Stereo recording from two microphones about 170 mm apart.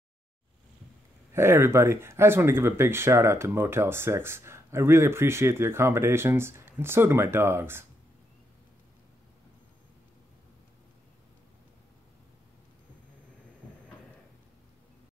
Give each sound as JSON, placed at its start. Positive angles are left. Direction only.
{"t": 1.3, "sound": "speech", "side_deg": -15}